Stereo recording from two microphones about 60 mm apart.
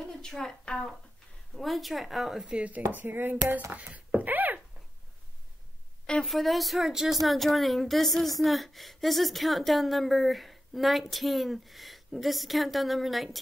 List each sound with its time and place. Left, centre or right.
0.0 s a woman's voice: centre
1.5 s a woman's voice: centre
2.9 s speech: right
3.7 s a sound: right
6.2 s a woman's voice: centre